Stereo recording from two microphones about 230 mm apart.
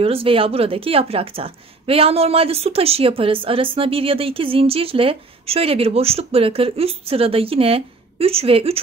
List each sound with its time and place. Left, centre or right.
0.0 s a woman's voice: right